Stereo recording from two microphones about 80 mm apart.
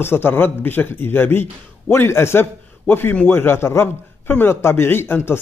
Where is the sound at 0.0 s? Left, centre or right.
Left.